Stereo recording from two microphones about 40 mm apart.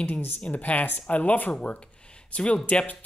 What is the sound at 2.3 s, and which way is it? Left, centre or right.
Speech, left.